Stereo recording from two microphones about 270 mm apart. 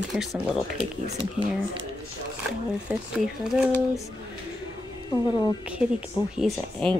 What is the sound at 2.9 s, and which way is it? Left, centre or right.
Speech, centre.